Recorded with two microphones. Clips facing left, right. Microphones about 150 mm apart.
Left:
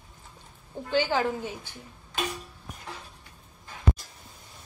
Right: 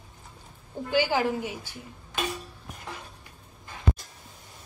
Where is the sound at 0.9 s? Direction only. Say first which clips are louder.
Right 1 dB; 10° right (ahead or behind).